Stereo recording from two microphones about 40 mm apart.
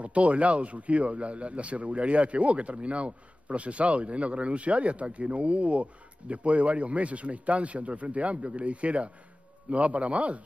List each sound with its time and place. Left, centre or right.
0.0 s a man's voice: right